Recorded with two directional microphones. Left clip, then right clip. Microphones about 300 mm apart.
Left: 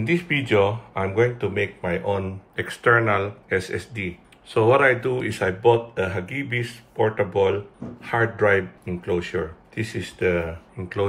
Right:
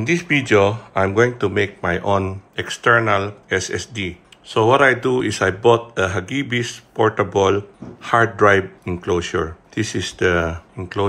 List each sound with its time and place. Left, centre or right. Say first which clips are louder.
0.0 s speech: right 5 dB; centre